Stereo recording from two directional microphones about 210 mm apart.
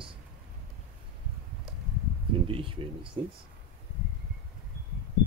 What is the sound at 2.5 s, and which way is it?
Speech, 25° right (ahead or behind).